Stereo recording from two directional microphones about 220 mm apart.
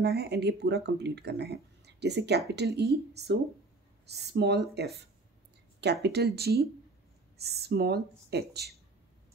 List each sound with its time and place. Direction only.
0.0 s speech: 45° right (ahead or behind)
4.0 s speech: 50° right (ahead or behind)